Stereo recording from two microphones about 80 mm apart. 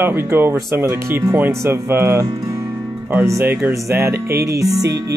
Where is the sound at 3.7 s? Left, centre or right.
Right.